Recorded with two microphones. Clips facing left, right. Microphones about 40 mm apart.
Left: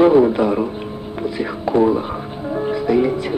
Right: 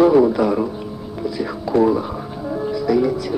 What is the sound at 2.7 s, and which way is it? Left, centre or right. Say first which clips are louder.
Music: left 1 dB; left.